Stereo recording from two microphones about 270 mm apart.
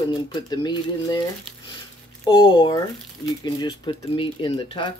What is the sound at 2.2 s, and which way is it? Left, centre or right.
Speech, centre.